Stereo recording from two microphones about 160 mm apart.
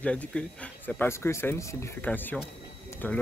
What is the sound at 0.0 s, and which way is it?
A man's voice, 5° left (ahead or behind).